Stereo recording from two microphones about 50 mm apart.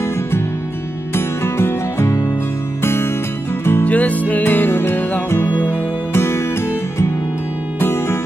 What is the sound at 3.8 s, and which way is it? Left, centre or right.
Music, left.